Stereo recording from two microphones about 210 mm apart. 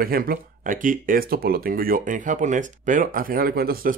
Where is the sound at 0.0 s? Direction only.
45° right (ahead or behind).